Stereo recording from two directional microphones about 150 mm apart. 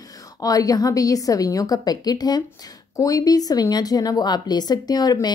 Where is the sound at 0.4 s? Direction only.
25° left (ahead or behind).